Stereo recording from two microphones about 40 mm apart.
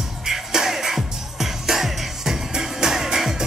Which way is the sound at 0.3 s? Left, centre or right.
Centre.